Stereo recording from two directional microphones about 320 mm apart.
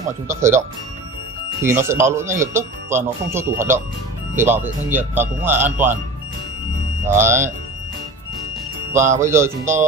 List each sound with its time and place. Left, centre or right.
0.3 s speech: centre
1.6 s speech: centre
7.1 s speech: centre
9.2 s speech: centre